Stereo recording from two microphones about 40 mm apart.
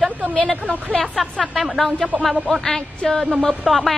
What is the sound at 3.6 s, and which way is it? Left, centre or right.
Speech, centre.